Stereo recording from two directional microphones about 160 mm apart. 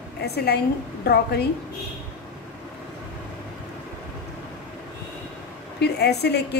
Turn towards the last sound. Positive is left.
turn(degrees=90)